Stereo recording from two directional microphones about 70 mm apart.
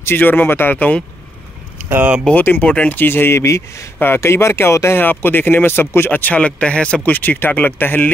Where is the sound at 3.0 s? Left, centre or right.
Left.